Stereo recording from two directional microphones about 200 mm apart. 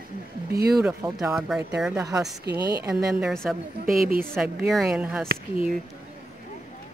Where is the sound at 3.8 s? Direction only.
45° right (ahead or behind).